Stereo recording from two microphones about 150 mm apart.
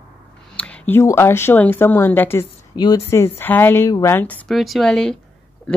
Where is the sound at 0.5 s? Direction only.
10° left (ahead or behind).